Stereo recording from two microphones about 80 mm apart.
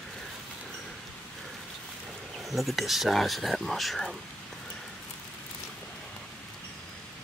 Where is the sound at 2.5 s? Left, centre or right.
Centre.